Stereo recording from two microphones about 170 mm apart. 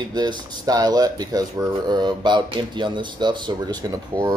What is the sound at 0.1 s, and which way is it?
Speech, 25° right (ahead or behind).